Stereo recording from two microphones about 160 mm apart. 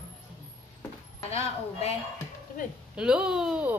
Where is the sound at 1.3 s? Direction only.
40° left (ahead or behind).